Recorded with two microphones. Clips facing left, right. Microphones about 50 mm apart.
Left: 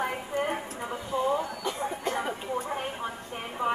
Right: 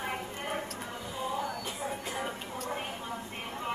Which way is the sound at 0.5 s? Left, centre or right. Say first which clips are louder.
Left 4 dB; left.